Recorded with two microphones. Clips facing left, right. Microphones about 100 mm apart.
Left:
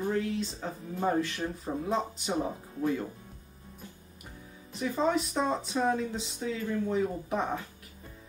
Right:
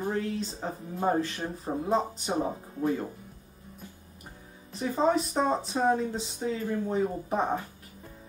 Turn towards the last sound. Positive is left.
turn(degrees=-30)  # may be behind; listen again after turning